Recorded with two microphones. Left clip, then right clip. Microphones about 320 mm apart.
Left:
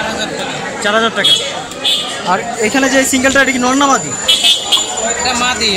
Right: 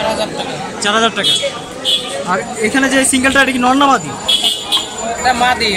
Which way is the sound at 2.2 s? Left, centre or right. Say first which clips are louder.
Left 3 dB; centre.